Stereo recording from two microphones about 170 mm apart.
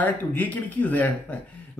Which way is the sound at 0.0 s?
10° left (ahead or behind).